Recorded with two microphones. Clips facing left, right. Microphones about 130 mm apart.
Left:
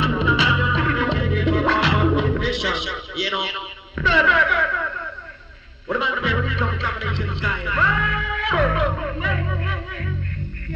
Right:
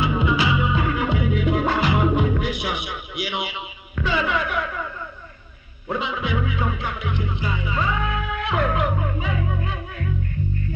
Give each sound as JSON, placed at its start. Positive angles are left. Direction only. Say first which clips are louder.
{"t": 0.0, "sound": "music", "louder": "left 1 dB", "side_deg": 90}
{"t": 3.4, "sound": "a sound", "louder": "left 1 dB", "side_deg": 90}
{"t": 5.9, "sound": "music", "louder": "left 2 dB", "side_deg": 90}